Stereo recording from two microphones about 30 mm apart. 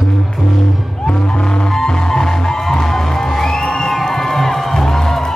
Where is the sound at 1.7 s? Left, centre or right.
Left.